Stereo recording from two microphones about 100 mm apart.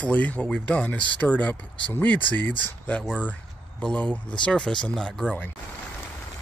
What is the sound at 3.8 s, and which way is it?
Speech, 10° left (ahead or behind).